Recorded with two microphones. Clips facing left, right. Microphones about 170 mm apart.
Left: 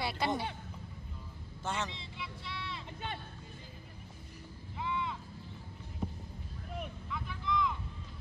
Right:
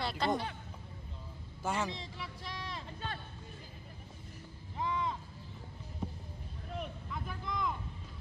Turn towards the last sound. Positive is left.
turn(degrees=-45)  # may be behind; listen again after turning